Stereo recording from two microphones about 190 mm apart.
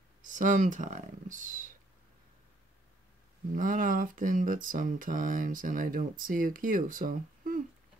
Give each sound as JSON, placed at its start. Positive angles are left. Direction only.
{"t": 0.2, "sound": "speech", "side_deg": -45}
{"t": 3.5, "sound": "speech", "side_deg": -45}